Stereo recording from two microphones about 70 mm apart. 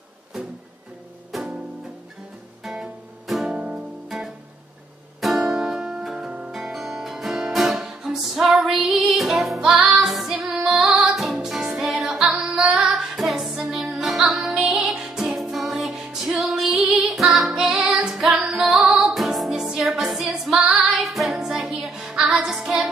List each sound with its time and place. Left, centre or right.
1.3 s music: centre
2.6 s music: centre
16.8 s female singing: centre
17.8 s music: centre
18.1 s music: centre